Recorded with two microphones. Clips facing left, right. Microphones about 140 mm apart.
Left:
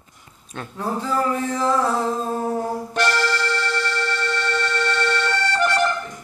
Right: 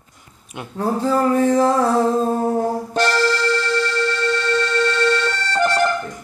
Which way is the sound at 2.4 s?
30° right (ahead or behind).